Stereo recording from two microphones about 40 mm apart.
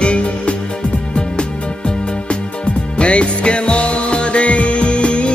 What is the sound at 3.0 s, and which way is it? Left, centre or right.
Music, left.